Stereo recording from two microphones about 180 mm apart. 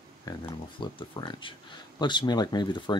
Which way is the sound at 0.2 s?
20° left (ahead or behind).